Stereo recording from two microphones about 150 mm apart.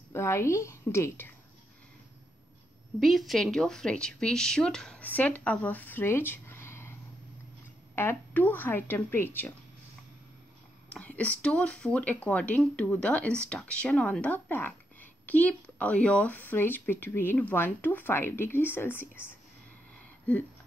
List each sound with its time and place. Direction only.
0.1 s a woman's voice: 20° left (ahead or behind)
3.0 s speech: centre (ahead or behind)
10.9 s speech: 10° left (ahead or behind)